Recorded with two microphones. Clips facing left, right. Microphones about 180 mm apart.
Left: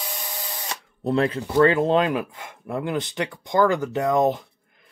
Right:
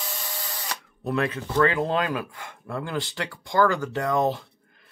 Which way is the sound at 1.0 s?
30° left (ahead or behind).